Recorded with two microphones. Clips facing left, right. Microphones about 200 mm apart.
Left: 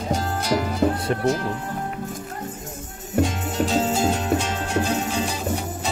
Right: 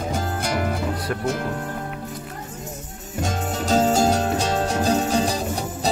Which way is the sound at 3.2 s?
45° right (ahead or behind).